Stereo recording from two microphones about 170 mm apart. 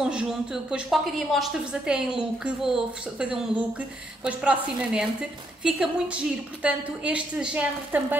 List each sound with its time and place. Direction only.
0.0 s a woman's voice: 5° right (ahead or behind)